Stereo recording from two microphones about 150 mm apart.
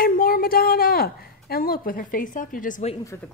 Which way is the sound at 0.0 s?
80° left.